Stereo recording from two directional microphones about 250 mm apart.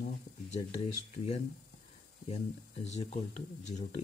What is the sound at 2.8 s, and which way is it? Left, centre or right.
Speech, left.